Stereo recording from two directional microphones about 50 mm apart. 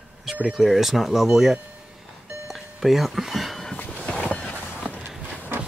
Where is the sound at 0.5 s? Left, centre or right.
Centre.